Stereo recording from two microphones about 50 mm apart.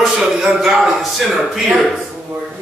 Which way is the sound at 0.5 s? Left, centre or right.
Centre.